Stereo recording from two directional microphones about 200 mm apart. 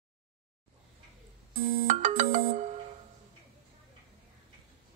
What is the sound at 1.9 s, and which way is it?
Ringtone, 40° right (ahead or behind).